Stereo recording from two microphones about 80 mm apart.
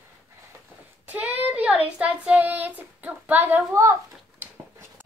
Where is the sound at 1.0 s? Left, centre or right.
Right.